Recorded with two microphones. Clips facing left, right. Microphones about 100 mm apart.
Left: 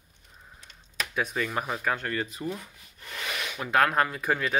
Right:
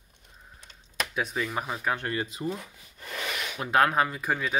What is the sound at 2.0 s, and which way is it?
Speech, 20° right (ahead or behind).